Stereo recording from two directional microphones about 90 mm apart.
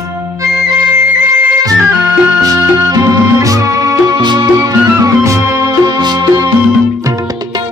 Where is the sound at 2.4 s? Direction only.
45° right (ahead or behind).